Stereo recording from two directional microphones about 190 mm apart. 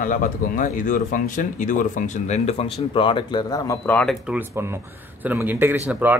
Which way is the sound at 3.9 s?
5° left (ahead or behind).